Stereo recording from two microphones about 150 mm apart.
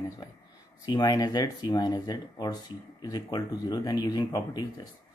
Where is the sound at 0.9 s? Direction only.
25° left (ahead or behind).